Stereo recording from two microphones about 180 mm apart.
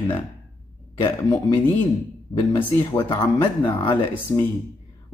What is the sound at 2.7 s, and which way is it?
Speech, 15° left (ahead or behind).